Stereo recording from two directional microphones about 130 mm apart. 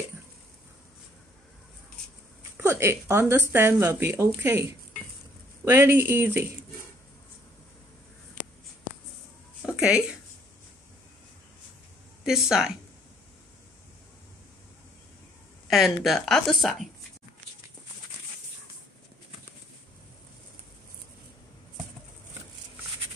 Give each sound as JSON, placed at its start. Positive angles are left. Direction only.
{"t": 2.5, "sound": "speech", "side_deg": -20}
{"t": 9.8, "sound": "speech", "side_deg": -5}
{"t": 12.3, "sound": "speech", "side_deg": -5}
{"t": 15.7, "sound": "speech", "side_deg": 0}